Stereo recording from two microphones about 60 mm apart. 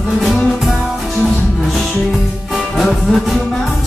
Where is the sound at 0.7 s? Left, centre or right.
Centre.